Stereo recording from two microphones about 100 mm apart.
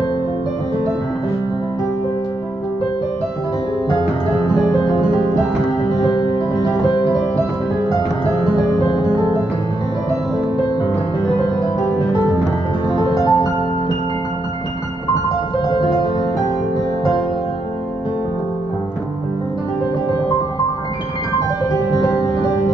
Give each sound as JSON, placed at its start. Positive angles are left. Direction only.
{"t": 6.1, "sound": "music", "side_deg": 45}
{"t": 12.9, "sound": "music", "side_deg": 35}